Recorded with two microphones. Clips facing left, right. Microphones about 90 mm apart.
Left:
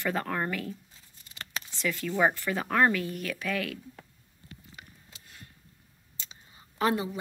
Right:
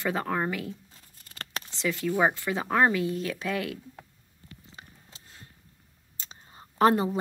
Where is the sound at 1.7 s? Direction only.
20° right (ahead or behind).